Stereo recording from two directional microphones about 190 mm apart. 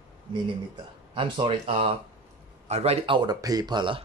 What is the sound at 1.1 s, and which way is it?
Speech, 30° right (ahead or behind).